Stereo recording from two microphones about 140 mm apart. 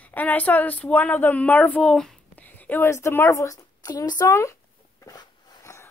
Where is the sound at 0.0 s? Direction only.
10° left (ahead or behind).